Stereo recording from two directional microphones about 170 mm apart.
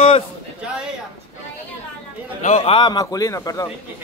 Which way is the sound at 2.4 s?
35° left (ahead or behind).